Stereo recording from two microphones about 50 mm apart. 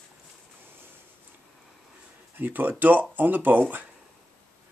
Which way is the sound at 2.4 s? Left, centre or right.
Right.